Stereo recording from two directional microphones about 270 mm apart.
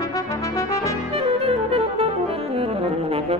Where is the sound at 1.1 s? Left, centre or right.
Right.